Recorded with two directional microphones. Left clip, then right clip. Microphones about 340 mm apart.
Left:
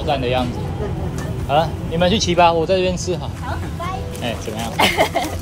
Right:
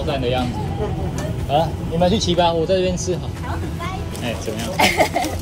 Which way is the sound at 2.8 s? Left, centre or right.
Centre.